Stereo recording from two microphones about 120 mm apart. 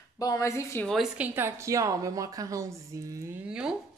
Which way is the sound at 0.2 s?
30° left (ahead or behind).